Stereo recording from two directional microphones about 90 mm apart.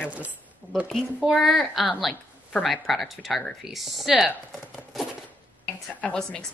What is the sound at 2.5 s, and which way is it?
Speech, 15° left (ahead or behind).